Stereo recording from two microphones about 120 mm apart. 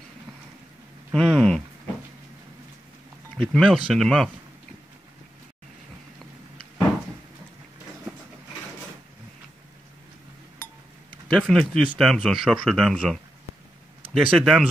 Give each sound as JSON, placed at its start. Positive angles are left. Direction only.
{"t": 1.1, "sound": "speech", "side_deg": 5}
{"t": 3.3, "sound": "speech", "side_deg": 5}
{"t": 11.3, "sound": "speech", "side_deg": 5}